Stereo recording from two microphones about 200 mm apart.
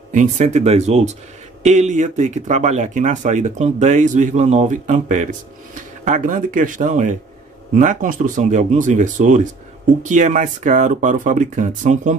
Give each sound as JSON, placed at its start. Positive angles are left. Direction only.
{"t": 0.1, "sound": "speech", "side_deg": -40}